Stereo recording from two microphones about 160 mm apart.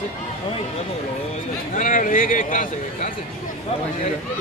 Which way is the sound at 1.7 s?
55° left (ahead or behind).